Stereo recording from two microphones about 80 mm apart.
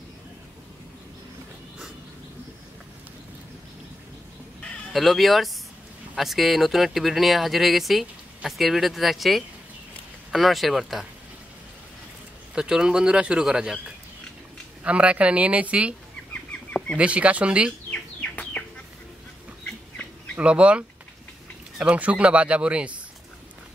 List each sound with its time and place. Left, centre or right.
4.9 s speech: centre
12.5 s speech: centre
16.9 s speech: centre
17.9 s bird: centre
20.3 s speech: centre